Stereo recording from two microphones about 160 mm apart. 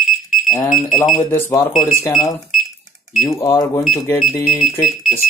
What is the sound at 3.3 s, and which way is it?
Speech, 20° left (ahead or behind).